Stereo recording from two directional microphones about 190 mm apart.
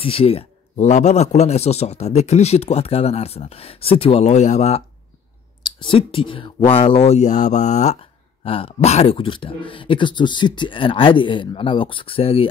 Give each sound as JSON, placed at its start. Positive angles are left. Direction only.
{"t": 0.0, "sound": "a man's voice", "side_deg": 30}